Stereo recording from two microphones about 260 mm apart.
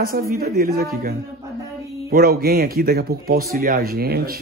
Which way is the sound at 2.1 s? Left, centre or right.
Right.